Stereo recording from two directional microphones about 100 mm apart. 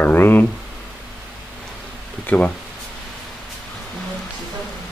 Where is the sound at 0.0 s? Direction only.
20° left (ahead or behind).